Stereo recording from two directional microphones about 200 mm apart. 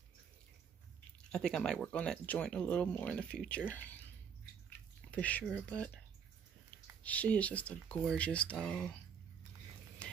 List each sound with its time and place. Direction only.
1.3 s speech: 5° left (ahead or behind)
5.1 s speech: 5° left (ahead or behind)
7.0 s speech: 5° left (ahead or behind)
10.0 s a sound: 5° left (ahead or behind)